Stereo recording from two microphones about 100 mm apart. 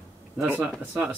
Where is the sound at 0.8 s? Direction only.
20° right (ahead or behind).